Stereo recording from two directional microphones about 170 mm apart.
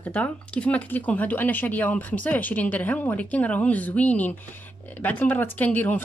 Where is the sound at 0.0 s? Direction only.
10° left (ahead or behind).